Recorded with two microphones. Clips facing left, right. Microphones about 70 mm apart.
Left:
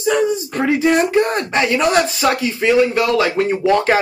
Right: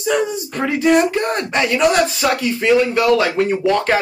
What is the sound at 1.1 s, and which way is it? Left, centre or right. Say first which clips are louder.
Speech: left 3 dB; centre.